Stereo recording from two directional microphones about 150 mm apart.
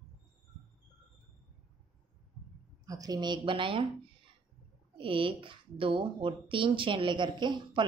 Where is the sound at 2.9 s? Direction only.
25° right (ahead or behind).